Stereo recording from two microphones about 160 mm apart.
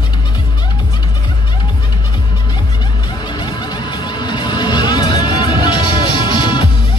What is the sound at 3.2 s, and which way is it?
Music, 30° left (ahead or behind).